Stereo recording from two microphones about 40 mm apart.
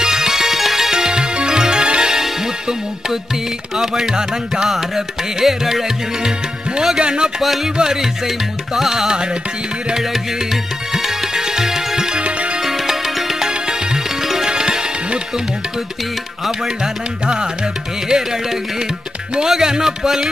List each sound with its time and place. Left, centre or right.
0.0 s music: centre
3.7 s music: centre
4.6 s music: centre
7.0 s speech: centre
7.4 s music: centre
7.7 s music: centre
10.5 s music: centre
12.2 s music: right
12.6 s music: centre
16.4 s music: centre
19.5 s music: centre